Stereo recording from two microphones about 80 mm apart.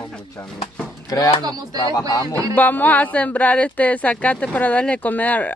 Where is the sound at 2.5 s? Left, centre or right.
Left.